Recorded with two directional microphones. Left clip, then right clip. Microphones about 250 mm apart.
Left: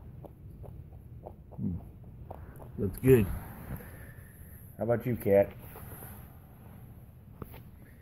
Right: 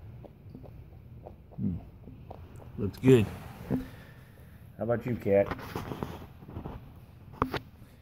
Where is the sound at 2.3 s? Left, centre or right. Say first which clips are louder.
Left 2 dB; centre.